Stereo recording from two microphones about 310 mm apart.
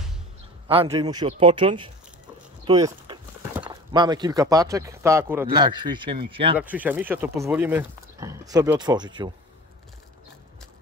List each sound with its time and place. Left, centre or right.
0.7 s speech: centre
6.6 s speech: centre